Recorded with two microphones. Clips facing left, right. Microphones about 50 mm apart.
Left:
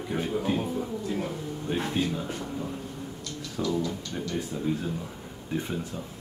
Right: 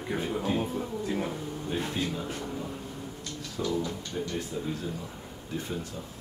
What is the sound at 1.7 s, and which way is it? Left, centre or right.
Speech, left.